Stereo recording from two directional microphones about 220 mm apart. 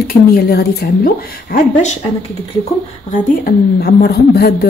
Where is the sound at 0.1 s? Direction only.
45° left (ahead or behind).